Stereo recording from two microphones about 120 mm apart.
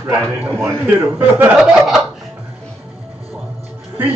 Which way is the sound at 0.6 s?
20° right (ahead or behind).